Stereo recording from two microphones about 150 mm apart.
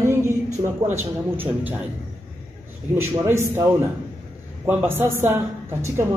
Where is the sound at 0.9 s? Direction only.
15° right (ahead or behind).